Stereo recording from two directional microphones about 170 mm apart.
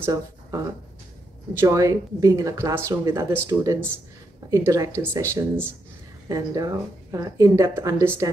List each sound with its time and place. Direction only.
0.0 s speech: 20° right (ahead or behind)
1.6 s speech: 20° right (ahead or behind)